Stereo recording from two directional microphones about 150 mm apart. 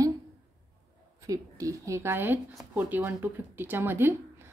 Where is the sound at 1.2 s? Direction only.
20° right (ahead or behind).